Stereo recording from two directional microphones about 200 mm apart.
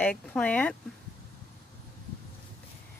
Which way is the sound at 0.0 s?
5° left (ahead or behind).